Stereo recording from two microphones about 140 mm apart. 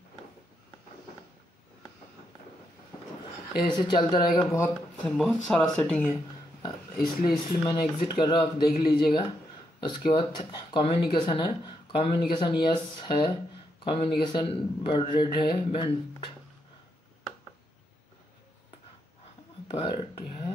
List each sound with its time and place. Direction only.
3.6 s speech: 30° left (ahead or behind)
4.4 s speech: 20° left (ahead or behind)
5.1 s speech: 5° left (ahead or behind)
6.6 s speech: 30° left (ahead or behind)
19.7 s a sound: 40° left (ahead or behind)